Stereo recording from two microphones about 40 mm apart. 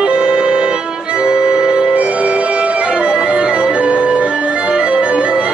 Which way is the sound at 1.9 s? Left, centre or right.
Right.